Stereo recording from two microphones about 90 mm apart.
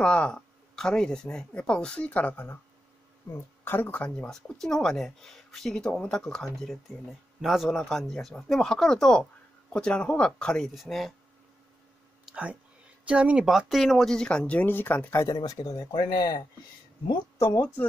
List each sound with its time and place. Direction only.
0.0 s speech: 10° left (ahead or behind)
12.3 s speech: 15° right (ahead or behind); by 15.1 s 20° left (ahead or behind)
15.1 s speech: 45° left (ahead or behind)